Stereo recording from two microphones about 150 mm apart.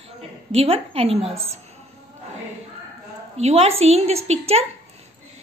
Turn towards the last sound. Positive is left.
turn(degrees=-45)  # may be behind; listen again after turning